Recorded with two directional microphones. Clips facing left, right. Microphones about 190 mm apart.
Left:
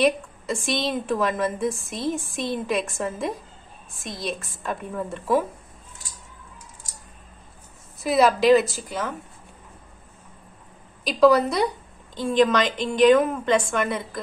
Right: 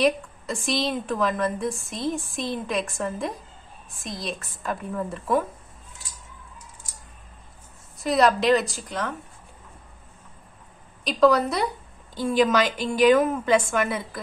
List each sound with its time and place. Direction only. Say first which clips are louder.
0.0 s a woman's voice: left 1 dB; centre (ahead or behind)
8.0 s a woman's voice: left 2 dB; 5° left (ahead or behind)
11.1 s a woman's voice: left 2 dB; centre (ahead or behind)